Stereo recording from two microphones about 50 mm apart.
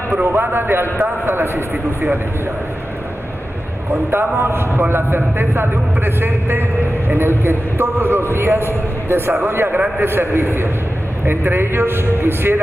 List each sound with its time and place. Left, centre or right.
0.1 s a man's voice: right
3.9 s a man's voice: right
4.4 s a man's voice: right
4.7 s a man's voice: right